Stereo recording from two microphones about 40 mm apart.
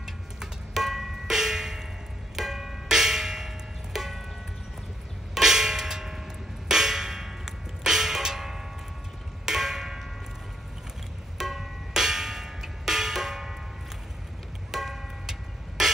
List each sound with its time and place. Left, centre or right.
0.0 s music: centre
5.3 s music: centre
6.7 s a sound: centre
9.5 s tick-tock: centre
11.3 s music: centre
14.7 s tick-tock: centre